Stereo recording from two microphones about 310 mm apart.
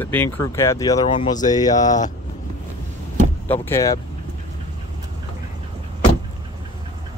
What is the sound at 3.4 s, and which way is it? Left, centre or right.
Speech, centre.